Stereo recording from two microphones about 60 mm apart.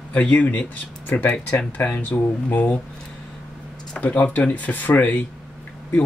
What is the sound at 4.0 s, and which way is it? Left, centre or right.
Speech, left.